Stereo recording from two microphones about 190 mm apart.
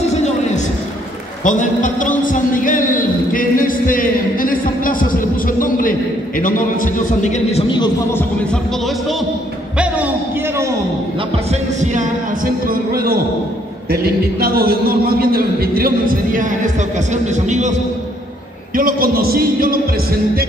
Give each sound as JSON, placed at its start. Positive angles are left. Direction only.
{"t": 1.4, "sound": "music", "side_deg": 40}
{"t": 5.6, "sound": "a sound", "side_deg": 45}
{"t": 9.8, "sound": "music", "side_deg": -5}
{"t": 11.3, "sound": "music", "side_deg": -40}
{"t": 12.6, "sound": "a man's voice", "side_deg": -50}
{"t": 18.8, "sound": "a man's voice", "side_deg": -50}